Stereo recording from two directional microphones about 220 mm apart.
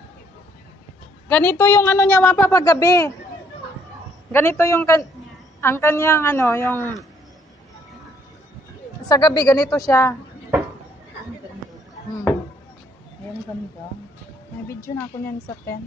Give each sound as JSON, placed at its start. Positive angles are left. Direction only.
{"t": 1.3, "sound": "a woman's voice", "side_deg": 10}
{"t": 4.3, "sound": "a woman's voice", "side_deg": 10}
{"t": 9.0, "sound": "a woman's voice", "side_deg": 20}